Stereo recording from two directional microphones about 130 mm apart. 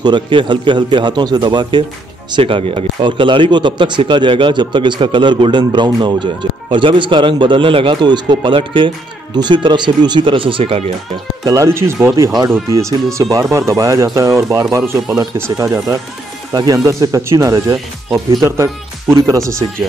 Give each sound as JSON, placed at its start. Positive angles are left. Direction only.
{"t": 0.0, "sound": "speech", "side_deg": -35}
{"t": 11.4, "sound": "speech", "side_deg": -25}